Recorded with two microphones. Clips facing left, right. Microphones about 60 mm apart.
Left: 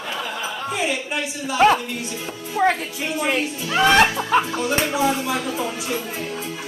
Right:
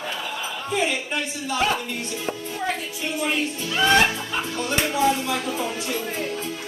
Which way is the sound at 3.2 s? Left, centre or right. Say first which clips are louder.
Left 2 dB; left.